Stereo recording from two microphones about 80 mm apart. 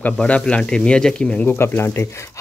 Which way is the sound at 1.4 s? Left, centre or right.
Left.